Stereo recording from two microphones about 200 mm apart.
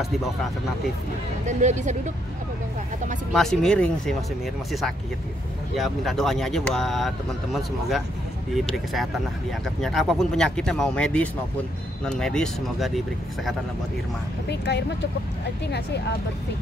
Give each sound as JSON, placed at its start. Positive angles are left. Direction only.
{"t": 1.6, "sound": "speech", "side_deg": -35}
{"t": 3.3, "sound": "speech", "side_deg": 5}
{"t": 5.8, "sound": "speech", "side_deg": 0}
{"t": 14.5, "sound": "speech", "side_deg": 55}